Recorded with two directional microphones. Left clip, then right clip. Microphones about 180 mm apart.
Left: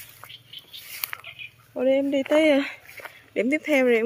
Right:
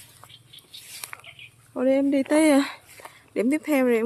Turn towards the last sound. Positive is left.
turn(degrees=-5)  # may be behind; listen again after turning